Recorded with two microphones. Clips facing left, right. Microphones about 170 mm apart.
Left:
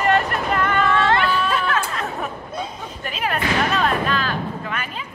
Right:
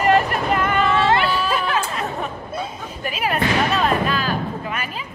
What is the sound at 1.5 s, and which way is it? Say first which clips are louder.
Chatter: even; 10° right (ahead or behind).